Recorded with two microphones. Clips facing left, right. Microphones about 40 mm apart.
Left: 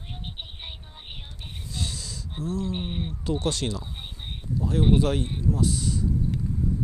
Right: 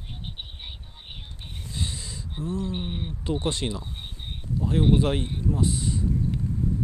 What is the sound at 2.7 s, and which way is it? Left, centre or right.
Speech, centre.